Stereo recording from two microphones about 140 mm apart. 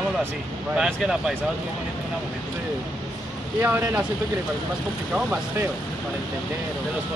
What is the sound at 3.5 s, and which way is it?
Speech, 15° right (ahead or behind).